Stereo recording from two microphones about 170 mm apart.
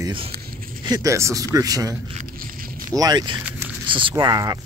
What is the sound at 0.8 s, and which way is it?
Speech, 20° right (ahead or behind).